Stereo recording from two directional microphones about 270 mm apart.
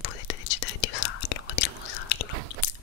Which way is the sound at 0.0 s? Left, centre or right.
Left.